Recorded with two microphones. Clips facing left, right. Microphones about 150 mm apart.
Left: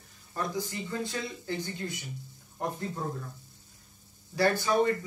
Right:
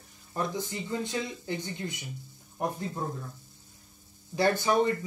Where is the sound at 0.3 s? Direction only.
20° right (ahead or behind).